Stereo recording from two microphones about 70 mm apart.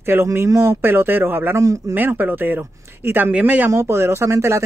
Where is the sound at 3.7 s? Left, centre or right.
Right.